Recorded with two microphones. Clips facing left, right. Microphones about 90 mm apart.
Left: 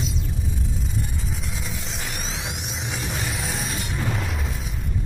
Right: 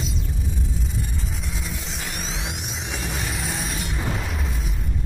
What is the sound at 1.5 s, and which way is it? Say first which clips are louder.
Music: even; centre (ahead or behind).